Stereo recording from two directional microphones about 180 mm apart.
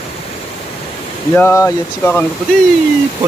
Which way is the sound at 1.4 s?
15° left (ahead or behind).